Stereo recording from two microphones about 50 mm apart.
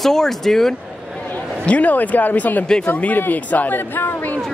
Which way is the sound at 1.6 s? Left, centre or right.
Left.